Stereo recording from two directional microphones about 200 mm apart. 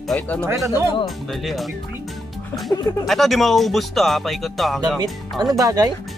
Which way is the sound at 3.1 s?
Centre (ahead or behind).